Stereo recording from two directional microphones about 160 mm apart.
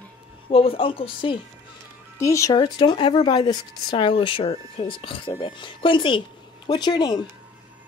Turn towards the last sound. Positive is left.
turn(degrees=25)  # may be behind; listen again after turning